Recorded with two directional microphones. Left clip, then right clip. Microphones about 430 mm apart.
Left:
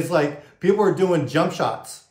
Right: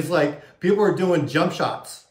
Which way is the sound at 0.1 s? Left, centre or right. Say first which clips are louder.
Right 1 dB; centre.